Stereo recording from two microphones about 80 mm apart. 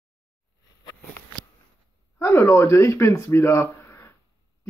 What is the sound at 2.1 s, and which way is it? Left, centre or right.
A man's voice, left.